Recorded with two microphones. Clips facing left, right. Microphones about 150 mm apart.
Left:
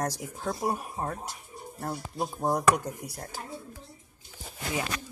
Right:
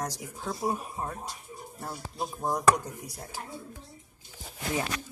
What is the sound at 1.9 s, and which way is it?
Speech, 20° left (ahead or behind).